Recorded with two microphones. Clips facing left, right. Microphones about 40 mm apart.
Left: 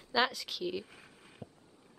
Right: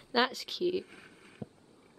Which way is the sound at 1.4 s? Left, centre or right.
Right.